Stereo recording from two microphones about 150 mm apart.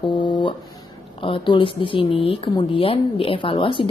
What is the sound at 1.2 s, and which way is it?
A woman's voice, 35° left (ahead or behind).